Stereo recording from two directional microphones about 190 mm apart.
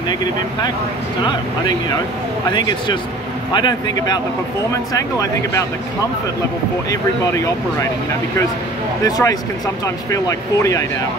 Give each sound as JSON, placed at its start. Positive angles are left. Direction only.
{"t": 3.5, "sound": "a man's voice", "side_deg": 25}
{"t": 9.0, "sound": "a man's voice", "side_deg": 20}